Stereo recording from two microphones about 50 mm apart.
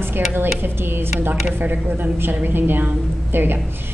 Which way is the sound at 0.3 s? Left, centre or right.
Right.